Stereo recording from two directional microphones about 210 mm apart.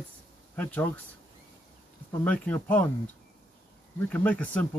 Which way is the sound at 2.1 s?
5° left (ahead or behind).